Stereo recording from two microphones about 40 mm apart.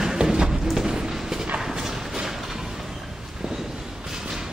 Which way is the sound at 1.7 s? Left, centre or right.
Centre.